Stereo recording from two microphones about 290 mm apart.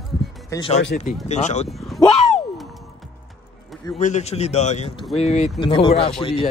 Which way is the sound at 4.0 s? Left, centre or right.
Left.